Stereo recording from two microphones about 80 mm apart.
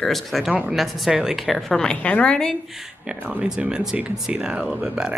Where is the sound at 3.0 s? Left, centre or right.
Centre.